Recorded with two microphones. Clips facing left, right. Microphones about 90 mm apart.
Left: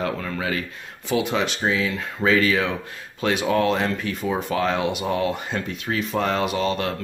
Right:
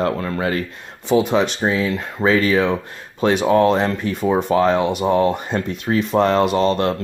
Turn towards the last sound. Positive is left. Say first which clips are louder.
# right 6 dB
turn(degrees=-45)  # may be behind; listen again after turning